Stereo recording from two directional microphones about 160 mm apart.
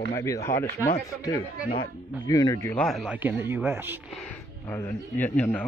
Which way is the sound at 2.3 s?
20° left (ahead or behind).